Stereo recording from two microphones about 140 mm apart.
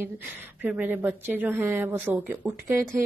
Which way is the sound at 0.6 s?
10° right (ahead or behind).